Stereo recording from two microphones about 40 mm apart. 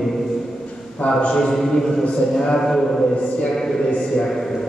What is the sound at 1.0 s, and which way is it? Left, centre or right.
Speech, left.